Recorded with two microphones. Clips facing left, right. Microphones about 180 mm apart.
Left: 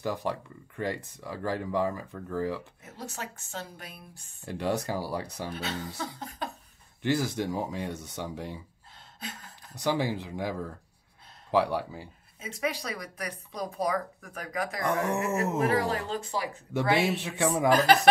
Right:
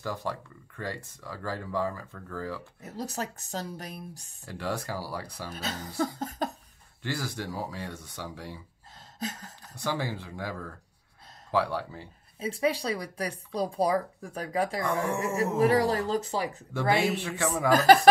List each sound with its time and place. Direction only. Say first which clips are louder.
0.0 s speech: left 3 dB; 15° left (ahead or behind)
2.8 s speech: right 5 dB; 40° right (ahead or behind)
4.5 s speech: left 4 dB; 20° left (ahead or behind)
5.5 s speech: left 2 dB; 40° right (ahead or behind)
7.0 s speech: left 6 dB; 20° left (ahead or behind)
9.2 s speech: right 6 dB; 40° right (ahead or behind)
9.8 s speech: left 4 dB; 20° left (ahead or behind)
12.4 s speech: right 5 dB; 30° right (ahead or behind)
16.7 s speech: even; 20° left (ahead or behind)